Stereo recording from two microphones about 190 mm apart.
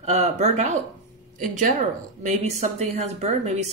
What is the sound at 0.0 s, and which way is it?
Speech, 35° right (ahead or behind).